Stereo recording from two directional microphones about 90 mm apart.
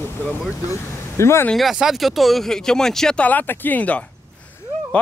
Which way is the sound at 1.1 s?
30° left (ahead or behind).